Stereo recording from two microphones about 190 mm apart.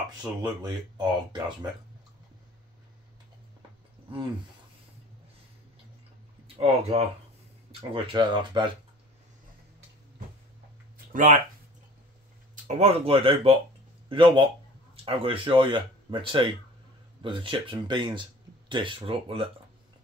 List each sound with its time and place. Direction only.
0.4 s speech: 20° right (ahead or behind)
6.4 s speech: 30° right (ahead or behind)
11.1 s speech: 40° right (ahead or behind)
12.6 s speech: 35° right (ahead or behind)